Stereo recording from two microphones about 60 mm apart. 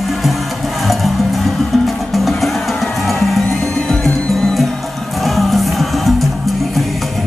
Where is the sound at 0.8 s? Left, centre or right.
Centre.